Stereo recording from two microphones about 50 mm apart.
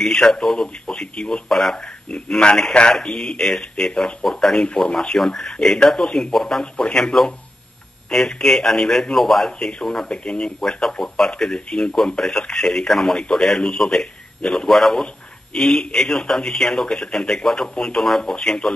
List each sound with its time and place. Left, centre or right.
0.0 s speech: centre
1.5 s speech: centre
2.1 s speech: centre
4.6 s speech: centre
4.9 s speech: centre
10.0 s speech: centre